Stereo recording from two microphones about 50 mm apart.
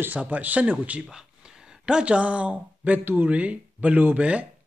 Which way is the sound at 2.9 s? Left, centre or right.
Right.